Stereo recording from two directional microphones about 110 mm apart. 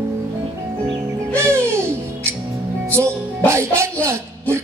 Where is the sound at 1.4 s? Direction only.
25° right (ahead or behind).